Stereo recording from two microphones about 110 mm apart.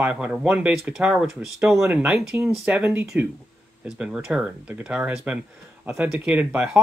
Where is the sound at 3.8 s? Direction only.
10° right (ahead or behind).